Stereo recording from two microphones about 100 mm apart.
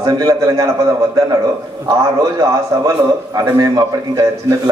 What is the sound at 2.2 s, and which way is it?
A man's voice, 35° right (ahead or behind).